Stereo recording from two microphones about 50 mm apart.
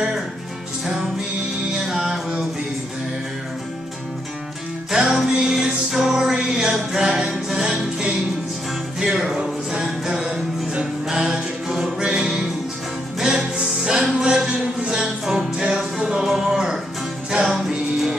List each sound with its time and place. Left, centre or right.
1.9 s music: centre
4.9 s music: centre